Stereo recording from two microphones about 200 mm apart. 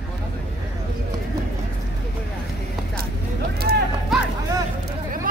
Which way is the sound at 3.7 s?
50° right (ahead or behind).